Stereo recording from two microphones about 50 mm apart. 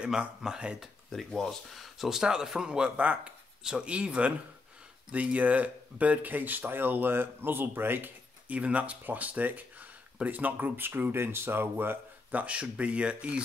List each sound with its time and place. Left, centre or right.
0.4 s speech: centre
1.1 s speech: centre; by 8.1 s right
8.5 s speech: right
12.3 s speech: right